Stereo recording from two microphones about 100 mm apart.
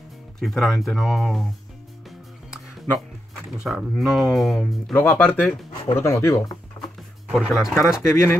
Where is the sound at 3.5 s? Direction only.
5° right (ahead or behind).